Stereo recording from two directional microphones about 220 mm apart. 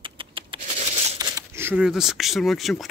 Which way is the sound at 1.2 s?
15° right (ahead or behind).